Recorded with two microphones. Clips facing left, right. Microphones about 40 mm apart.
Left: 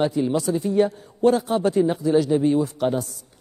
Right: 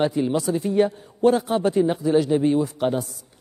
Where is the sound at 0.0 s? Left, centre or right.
Centre.